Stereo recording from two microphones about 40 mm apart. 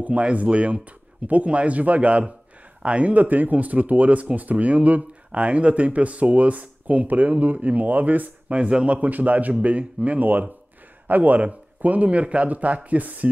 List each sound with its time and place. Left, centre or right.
0.0 s speech: right
8.5 s speech: right